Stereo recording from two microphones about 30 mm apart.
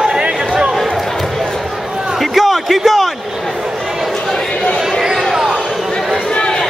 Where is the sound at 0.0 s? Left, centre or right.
Right.